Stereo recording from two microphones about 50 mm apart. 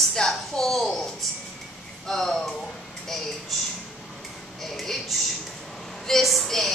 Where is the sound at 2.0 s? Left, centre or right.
Centre.